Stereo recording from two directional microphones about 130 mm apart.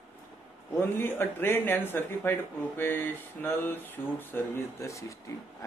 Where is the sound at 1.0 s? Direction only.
15° left (ahead or behind).